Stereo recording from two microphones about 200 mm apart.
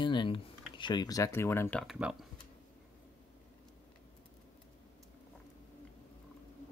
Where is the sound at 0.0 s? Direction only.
25° left (ahead or behind); by 2.0 s 5° left (ahead or behind).